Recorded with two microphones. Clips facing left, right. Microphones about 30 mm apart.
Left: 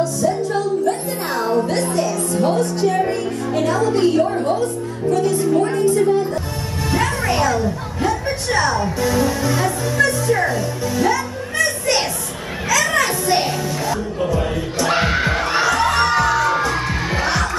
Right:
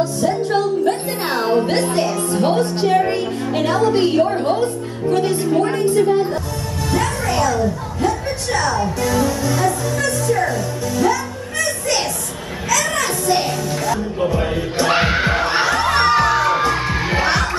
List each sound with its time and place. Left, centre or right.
0.0 s music: right
3.5 s a woman's voice: right
5.5 s speech: right
5.8 s a woman's voice: right
6.9 s a woman's voice: centre
11.5 s children playing: centre
12.7 s music: centre
14.3 s music: centre